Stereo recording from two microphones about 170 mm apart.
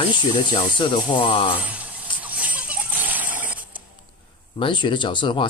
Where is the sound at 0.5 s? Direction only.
30° left (ahead or behind).